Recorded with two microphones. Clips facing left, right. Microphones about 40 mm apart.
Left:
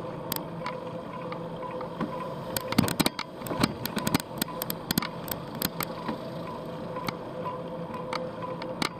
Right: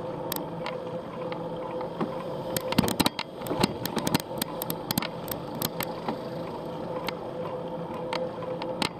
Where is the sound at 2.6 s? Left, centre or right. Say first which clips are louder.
Right 1 dB; right.